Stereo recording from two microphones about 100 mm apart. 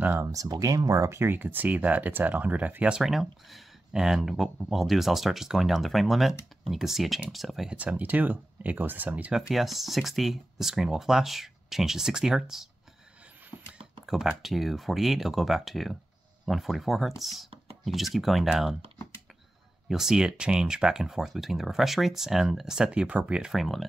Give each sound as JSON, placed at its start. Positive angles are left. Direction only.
{"t": 0.2, "sound": "speech", "side_deg": -35}
{"t": 7.7, "sound": "speech", "side_deg": -15}
{"t": 9.5, "sound": "speech", "side_deg": 0}
{"t": 14.0, "sound": "speech", "side_deg": -5}
{"t": 19.9, "sound": "speech", "side_deg": -5}